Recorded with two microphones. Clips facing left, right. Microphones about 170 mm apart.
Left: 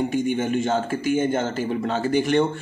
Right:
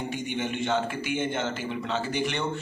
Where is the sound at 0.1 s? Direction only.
45° left (ahead or behind).